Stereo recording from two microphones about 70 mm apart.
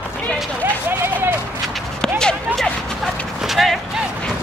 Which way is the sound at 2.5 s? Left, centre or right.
Centre.